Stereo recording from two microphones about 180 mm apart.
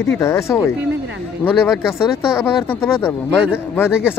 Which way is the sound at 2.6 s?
10° left (ahead or behind).